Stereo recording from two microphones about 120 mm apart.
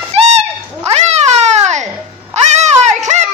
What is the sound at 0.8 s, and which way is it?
Cat, 65° right (ahead or behind).